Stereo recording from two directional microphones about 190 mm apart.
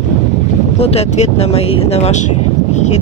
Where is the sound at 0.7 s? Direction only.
30° left (ahead or behind).